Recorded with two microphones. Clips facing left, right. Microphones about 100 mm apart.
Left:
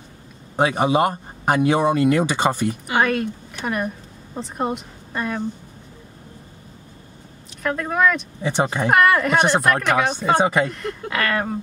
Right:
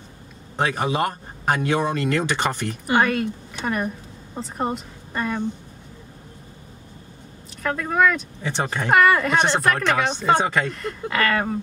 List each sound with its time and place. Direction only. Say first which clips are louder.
0.6 s speech: left 4 dB; 20° left (ahead or behind)
7.6 s speech: left 1 dB; 5° left (ahead or behind)
8.4 s speech: left 4 dB; 15° left (ahead or behind)
10.8 s speech: right 1 dB; centre (ahead or behind)